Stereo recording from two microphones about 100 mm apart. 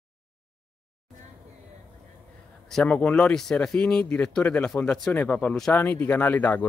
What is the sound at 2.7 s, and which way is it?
Speech, 10° left (ahead or behind).